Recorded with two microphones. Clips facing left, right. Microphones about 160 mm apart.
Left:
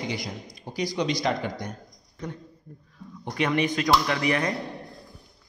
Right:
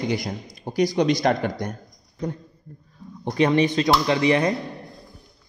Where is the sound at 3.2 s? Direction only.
30° right (ahead or behind).